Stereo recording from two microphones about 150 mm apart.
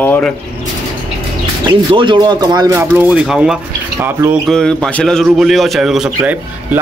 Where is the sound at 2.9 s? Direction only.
10° right (ahead or behind).